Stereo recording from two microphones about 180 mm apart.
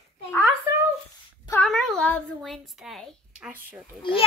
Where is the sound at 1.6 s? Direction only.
Centre (ahead or behind).